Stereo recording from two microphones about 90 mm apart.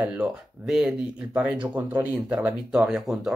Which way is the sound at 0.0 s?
10° right (ahead or behind).